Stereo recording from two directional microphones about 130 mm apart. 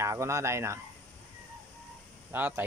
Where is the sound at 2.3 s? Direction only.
15° right (ahead or behind).